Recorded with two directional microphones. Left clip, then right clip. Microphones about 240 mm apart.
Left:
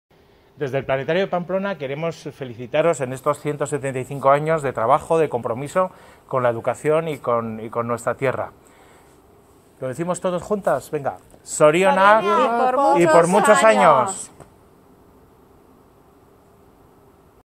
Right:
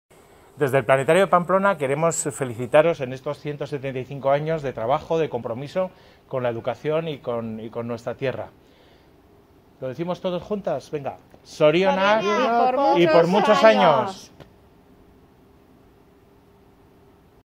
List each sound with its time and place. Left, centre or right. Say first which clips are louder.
0.6 s a man's voice: right 4 dB; centre
2.8 s speech: left 1 dB; centre
9.8 s speech: left 3 dB; left
10.6 s speech: left 5 dB; centre